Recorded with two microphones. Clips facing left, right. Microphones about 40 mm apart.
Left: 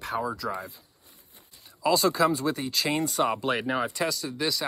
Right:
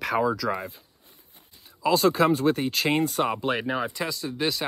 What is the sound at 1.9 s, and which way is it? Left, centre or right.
Speech, right.